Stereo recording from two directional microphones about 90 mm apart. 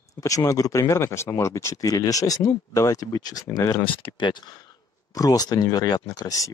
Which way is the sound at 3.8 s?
70° left (ahead or behind).